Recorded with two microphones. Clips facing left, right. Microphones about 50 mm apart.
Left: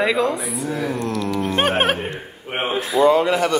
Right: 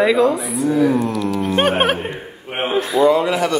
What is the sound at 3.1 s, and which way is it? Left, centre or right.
Speech, left.